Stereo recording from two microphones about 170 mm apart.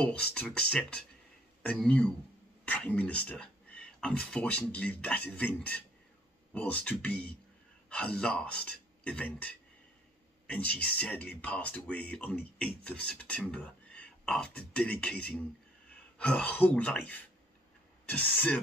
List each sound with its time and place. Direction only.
0.0 s speech: 5° left (ahead or behind)